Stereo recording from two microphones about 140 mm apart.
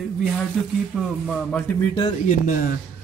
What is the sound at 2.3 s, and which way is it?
Speech, 70° left (ahead or behind).